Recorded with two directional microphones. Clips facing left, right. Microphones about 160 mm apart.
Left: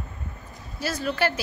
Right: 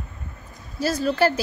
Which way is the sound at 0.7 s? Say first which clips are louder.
Right 5 dB; 35° right (ahead or behind).